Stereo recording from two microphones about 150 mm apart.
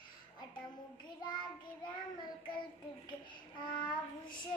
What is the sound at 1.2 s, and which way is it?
Child singing, 30° left (ahead or behind).